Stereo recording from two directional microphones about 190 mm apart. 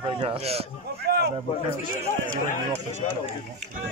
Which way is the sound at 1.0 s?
60° right (ahead or behind).